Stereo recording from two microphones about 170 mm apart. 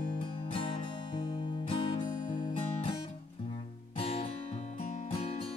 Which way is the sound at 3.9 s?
30° left (ahead or behind).